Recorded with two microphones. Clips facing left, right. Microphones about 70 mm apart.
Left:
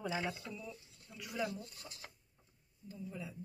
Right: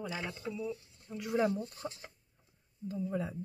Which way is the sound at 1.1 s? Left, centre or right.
Right.